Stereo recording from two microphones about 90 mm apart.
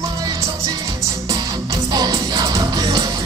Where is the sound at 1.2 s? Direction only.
45° right (ahead or behind).